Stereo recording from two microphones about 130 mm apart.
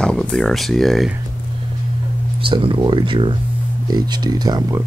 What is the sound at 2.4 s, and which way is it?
Speech, 40° right (ahead or behind).